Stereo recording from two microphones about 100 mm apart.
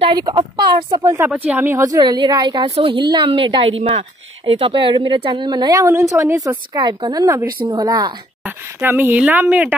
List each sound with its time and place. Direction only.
0.1 s a woman's voice: 55° right (ahead or behind)
1.0 s speech: 25° right (ahead or behind)
2.0 s a woman's voice: 45° right (ahead or behind); by 6.4 s 30° right (ahead or behind)
6.7 s a woman's voice: 45° right (ahead or behind)
8.5 s speech: 20° right (ahead or behind)